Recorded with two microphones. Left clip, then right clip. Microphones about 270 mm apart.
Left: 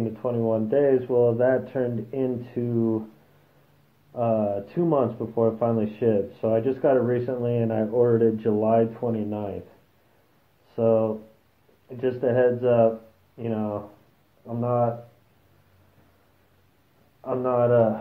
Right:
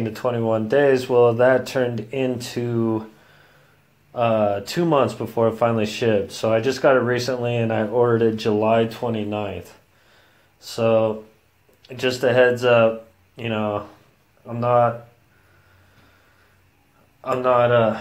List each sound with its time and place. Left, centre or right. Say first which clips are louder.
0.2 s speech: right 4 dB; right
4.1 s speech: right 5 dB; right
10.8 s speech: right 3 dB; right
17.2 s speech: right 5 dB; right